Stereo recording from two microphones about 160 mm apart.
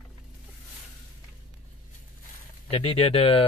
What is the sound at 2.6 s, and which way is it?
Speech, 35° left (ahead or behind).